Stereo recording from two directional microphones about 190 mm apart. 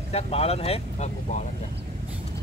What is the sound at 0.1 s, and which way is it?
Speech, 30° left (ahead or behind).